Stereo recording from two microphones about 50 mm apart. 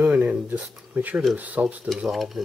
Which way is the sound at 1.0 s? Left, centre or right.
Right.